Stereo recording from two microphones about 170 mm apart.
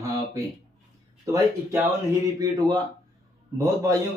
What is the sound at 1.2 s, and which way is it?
A man's voice, 20° right (ahead or behind).